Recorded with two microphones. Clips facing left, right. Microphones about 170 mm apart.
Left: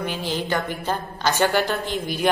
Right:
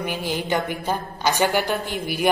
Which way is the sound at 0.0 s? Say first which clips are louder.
Even; 10° right (ahead or behind).